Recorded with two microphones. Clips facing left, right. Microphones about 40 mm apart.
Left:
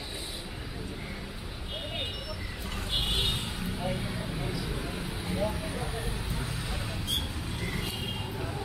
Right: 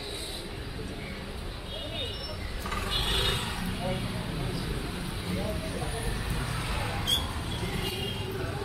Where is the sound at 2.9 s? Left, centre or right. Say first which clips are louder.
Even; right.